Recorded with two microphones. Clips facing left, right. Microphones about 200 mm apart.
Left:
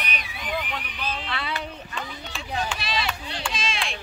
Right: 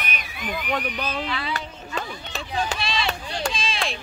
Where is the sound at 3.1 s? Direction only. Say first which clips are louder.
Right 4 dB; 45° right (ahead or behind).